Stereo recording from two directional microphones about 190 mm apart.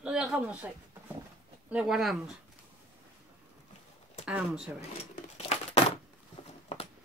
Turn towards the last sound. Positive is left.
turn(degrees=30)  # may be behind; listen again after turning